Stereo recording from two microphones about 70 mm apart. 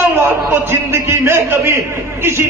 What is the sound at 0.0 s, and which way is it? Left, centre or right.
A man's voice, right.